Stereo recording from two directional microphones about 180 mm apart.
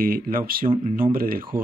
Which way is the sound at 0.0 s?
50° right (ahead or behind).